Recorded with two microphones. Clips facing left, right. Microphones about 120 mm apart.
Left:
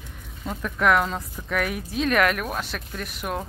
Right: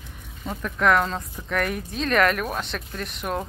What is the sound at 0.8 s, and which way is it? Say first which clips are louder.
Speech: even; 5° left (ahead or behind).